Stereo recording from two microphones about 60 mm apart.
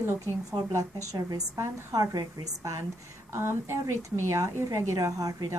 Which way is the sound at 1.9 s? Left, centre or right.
Right.